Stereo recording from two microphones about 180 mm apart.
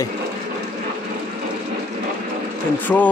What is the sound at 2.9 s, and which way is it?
Speech, 10° left (ahead or behind).